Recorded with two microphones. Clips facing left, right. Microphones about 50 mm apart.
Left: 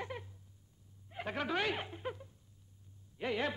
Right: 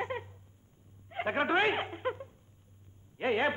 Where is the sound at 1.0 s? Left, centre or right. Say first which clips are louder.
Right 8 dB; right.